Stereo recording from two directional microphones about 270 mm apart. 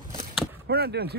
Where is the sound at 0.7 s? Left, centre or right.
Right.